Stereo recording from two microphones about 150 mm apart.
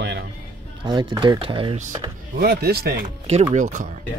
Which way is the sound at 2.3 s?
90° right.